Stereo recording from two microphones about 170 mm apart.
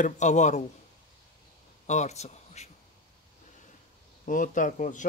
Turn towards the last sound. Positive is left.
turn(degrees=50)  # may be behind; listen again after turning